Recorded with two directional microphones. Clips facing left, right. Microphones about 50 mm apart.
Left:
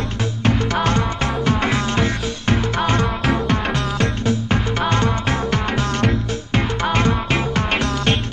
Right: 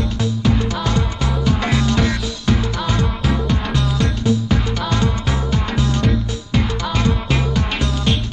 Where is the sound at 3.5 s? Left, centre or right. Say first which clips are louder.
Left 1 dB; left.